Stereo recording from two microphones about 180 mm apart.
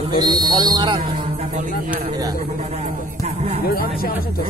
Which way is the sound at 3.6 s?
55° left (ahead or behind).